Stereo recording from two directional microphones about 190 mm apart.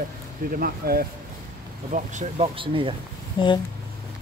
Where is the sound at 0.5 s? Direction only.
50° right (ahead or behind).